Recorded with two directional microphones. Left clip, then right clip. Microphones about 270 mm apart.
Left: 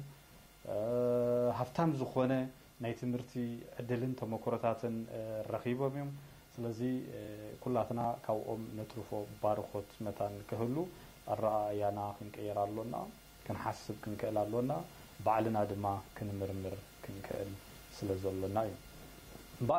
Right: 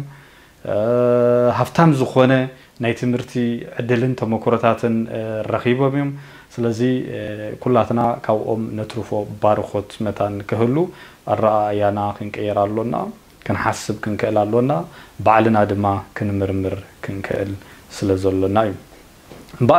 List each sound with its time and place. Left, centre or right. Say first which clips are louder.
0.7 s speech: right 17 dB; right